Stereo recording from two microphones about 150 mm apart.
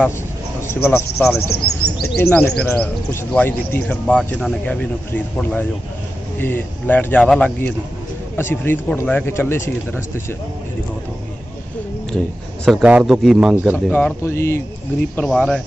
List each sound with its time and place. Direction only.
0.6 s a sound: 15° left (ahead or behind)
1.1 s speech: centre (ahead or behind)
1.5 s speech: 90° left
2.2 s speech: 20° left (ahead or behind)
12.8 s speech: 5° right (ahead or behind)
13.9 s speech: 15° left (ahead or behind)
15.1 s speech: 5° left (ahead or behind)